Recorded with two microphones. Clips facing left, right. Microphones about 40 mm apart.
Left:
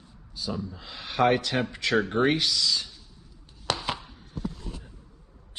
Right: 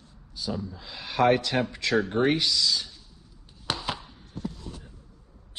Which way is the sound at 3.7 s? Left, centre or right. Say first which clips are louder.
Left 2 dB; centre.